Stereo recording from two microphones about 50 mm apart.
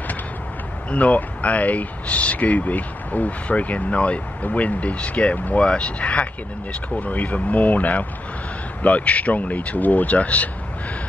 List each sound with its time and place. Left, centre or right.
0.8 s speech: left